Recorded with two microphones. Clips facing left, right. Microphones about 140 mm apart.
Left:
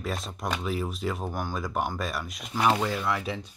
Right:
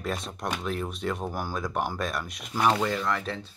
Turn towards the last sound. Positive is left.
turn(degrees=10)  # may be behind; listen again after turning